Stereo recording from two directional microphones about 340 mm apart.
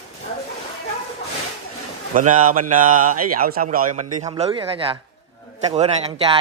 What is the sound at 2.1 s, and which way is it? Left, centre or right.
A man's voice, right.